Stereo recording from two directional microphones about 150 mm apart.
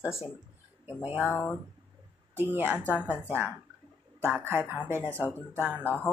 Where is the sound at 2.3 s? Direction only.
15° right (ahead or behind).